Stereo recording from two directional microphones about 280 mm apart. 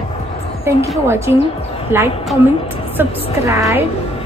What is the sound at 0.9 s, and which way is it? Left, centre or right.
Speech, centre.